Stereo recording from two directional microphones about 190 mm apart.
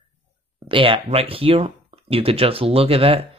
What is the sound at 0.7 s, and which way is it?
Speech, 30° right (ahead or behind).